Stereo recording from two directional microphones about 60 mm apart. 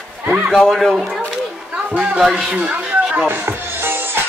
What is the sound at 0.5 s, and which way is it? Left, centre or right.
Speech, centre.